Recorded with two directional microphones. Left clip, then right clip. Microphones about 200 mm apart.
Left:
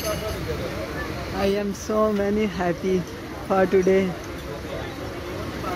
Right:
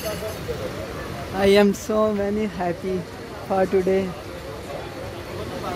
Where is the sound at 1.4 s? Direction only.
55° right (ahead or behind).